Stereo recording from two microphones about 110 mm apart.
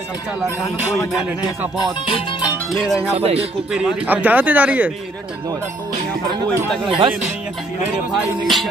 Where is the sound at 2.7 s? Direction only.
Centre (ahead or behind).